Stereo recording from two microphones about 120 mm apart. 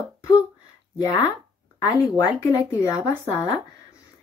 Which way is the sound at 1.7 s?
35° left (ahead or behind).